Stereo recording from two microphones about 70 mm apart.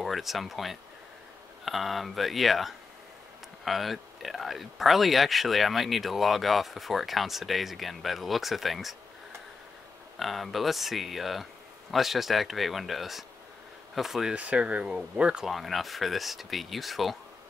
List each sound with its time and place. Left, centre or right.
0.0 s speech: centre
10.1 s speech: centre
14.3 s speech: centre
15.4 s speech: centre